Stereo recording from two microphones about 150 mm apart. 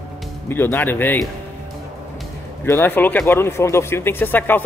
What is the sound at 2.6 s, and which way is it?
Speech, 15° left (ahead or behind).